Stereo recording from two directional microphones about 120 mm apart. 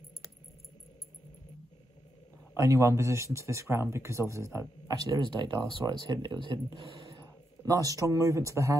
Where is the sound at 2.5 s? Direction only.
25° right (ahead or behind).